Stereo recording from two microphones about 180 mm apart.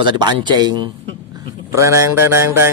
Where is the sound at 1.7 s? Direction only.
15° right (ahead or behind).